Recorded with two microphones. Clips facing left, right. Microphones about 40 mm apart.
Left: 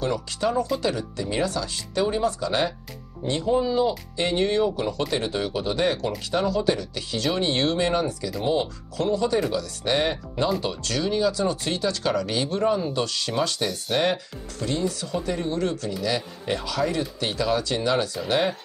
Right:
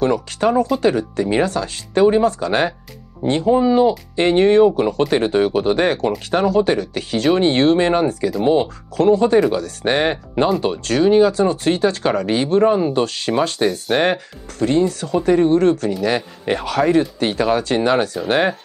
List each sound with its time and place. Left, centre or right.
0.0 s speech: right